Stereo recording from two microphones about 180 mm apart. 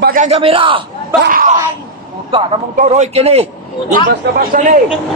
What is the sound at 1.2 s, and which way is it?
Speech, 50° right (ahead or behind).